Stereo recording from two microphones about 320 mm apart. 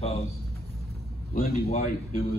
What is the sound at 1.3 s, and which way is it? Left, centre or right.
Speech, centre.